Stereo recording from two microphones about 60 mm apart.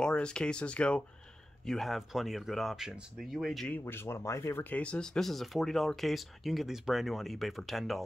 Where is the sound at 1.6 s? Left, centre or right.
Centre.